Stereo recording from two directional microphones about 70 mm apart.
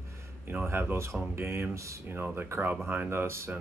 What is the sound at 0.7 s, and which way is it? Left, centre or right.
Speech, right.